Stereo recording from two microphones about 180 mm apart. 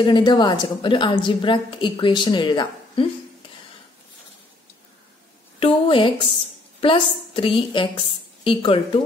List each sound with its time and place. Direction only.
0.0 s a woman's voice: 25° left (ahead or behind)
5.6 s a woman's voice: 30° left (ahead or behind)